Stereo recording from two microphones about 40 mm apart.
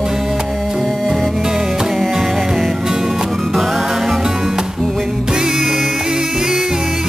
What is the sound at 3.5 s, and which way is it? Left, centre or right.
Music, centre.